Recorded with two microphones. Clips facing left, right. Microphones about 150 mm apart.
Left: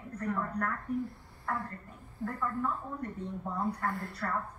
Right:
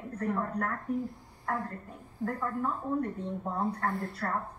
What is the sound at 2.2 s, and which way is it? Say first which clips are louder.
Speech: right 4 dB; 20° right (ahead or behind).